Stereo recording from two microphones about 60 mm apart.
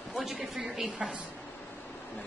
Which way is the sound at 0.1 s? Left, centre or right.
Centre.